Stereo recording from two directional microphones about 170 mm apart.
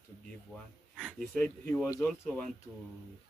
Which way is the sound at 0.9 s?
5° right (ahead or behind).